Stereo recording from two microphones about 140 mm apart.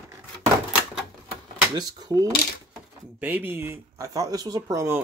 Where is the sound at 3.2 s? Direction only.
10° right (ahead or behind).